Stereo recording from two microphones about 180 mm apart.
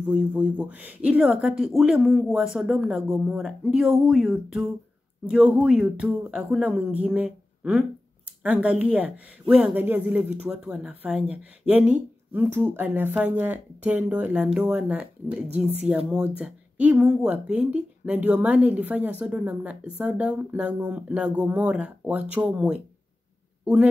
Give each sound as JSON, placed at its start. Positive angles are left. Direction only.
{"t": 0.0, "sound": "speech", "side_deg": -5}